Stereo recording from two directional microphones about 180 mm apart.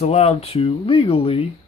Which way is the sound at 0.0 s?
35° left (ahead or behind).